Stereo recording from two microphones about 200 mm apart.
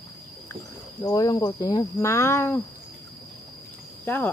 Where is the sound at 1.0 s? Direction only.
20° left (ahead or behind).